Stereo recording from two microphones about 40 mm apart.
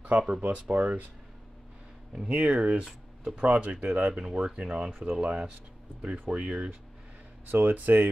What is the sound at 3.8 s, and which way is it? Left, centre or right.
Speech, right.